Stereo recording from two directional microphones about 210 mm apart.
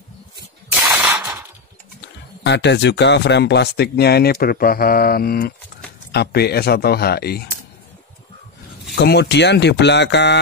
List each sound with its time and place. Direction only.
0.7 s spray: 10° right (ahead or behind)
2.4 s speech: 55° left (ahead or behind)
8.9 s speech: 50° left (ahead or behind)